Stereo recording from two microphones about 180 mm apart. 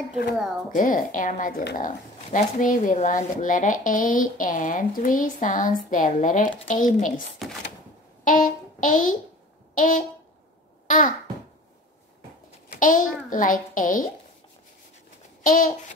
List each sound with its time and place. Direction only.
0.7 s speech: 50° left (ahead or behind)
7.4 s speech: centre (ahead or behind)
8.2 s a sound: 50° left (ahead or behind)
9.8 s speech: 45° left (ahead or behind)
10.9 s babbling: 45° left (ahead or behind)
12.7 s speech: 45° left (ahead or behind)
15.4 s a child's voice: 50° left (ahead or behind)